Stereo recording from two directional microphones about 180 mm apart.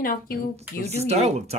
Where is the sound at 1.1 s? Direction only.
35° right (ahead or behind).